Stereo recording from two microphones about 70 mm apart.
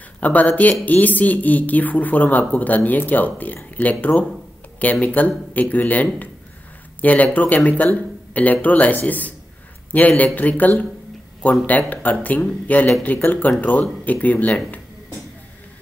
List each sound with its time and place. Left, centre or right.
0.2 s speech: left